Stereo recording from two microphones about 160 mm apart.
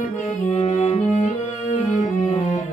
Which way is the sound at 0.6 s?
45° left (ahead or behind).